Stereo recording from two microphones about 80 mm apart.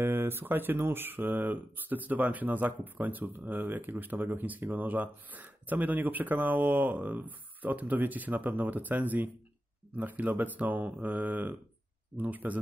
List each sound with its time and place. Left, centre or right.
0.0 s speech: right